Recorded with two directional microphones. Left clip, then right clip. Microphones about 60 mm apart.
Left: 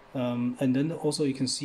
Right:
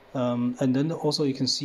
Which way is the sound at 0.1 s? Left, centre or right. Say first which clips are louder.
Right 4 dB; right.